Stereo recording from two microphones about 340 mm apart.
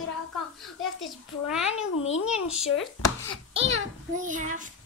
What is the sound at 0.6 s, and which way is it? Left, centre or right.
A child's voice, centre.